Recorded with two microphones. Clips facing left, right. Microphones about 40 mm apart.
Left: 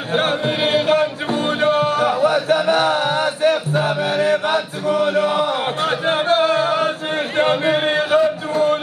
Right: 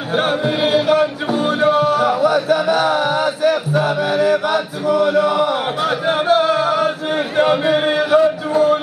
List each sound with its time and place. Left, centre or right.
0.1 s music: left
2.5 s chant: left
6.0 s music: left
7.3 s singing: left